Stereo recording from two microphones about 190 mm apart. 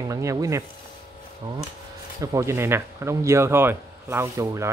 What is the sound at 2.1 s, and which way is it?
Speech, 15° right (ahead or behind).